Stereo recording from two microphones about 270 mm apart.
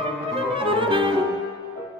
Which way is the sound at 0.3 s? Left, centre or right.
Centre.